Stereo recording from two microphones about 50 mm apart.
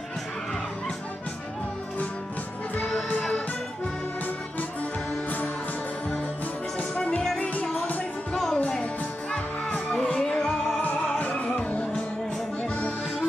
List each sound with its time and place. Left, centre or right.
3.2 s music: left
6.8 s music: left
7.3 s music: left; by 10.8 s centre
10.8 s music: left